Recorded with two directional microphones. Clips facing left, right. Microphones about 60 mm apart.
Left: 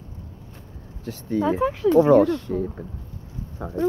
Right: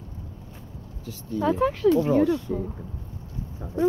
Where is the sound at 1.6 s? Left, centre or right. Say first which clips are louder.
Even; centre.